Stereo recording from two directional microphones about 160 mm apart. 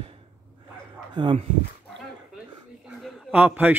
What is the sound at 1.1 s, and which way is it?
Speech, 30° right (ahead or behind).